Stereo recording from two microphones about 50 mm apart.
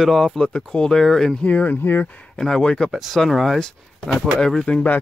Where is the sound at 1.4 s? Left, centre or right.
Left.